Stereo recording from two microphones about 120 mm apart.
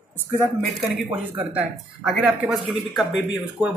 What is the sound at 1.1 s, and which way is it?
A man's voice, 10° right (ahead or behind).